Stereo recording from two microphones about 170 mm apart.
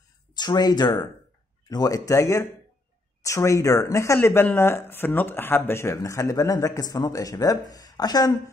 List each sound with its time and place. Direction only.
0.3 s speech: 25° left (ahead or behind)